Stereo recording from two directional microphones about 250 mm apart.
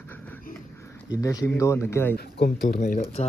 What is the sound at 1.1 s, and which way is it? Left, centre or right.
Speech, centre.